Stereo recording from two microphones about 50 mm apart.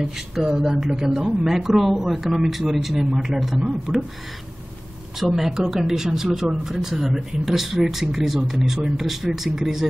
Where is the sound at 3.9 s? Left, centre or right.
Right.